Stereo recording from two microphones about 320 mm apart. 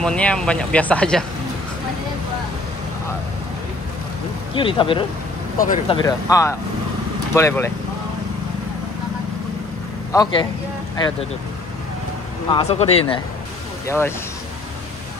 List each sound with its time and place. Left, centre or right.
0.0 s speech: centre
4.6 s speech: centre
5.9 s speech: centre
10.1 s speech: centre
12.5 s speech: centre
13.8 s speech: centre